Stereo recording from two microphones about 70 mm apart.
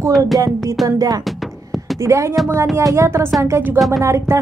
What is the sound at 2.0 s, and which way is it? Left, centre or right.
A woman's voice, right.